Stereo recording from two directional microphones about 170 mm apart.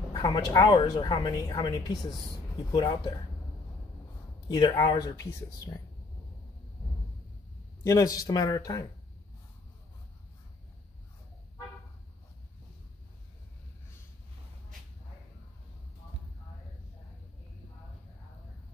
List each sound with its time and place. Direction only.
0.1 s speech: 25° left (ahead or behind)
4.5 s speech: 25° left (ahead or behind)
7.8 s speech: 20° left (ahead or behind)